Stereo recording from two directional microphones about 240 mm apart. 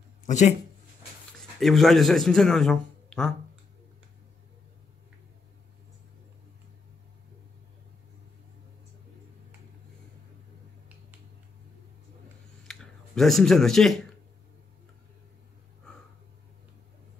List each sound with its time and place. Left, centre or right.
0.3 s speech: left
1.4 s a man's voice: centre
12.6 s a sound: centre